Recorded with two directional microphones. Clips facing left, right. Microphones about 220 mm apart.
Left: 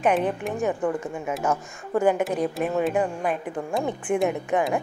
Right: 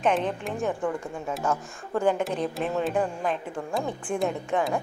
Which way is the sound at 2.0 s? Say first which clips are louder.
Left 3 dB; 10° left (ahead or behind).